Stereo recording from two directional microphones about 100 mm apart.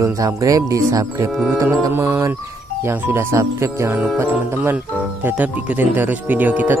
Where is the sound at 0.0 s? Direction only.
35° right (ahead or behind).